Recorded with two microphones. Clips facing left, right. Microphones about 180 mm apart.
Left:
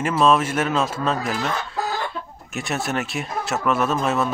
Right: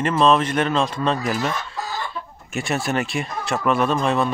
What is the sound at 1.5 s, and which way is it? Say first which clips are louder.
Chicken: left 3 dB; 65° left (ahead or behind).